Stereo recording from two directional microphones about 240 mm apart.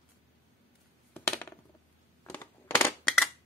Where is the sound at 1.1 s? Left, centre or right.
Centre.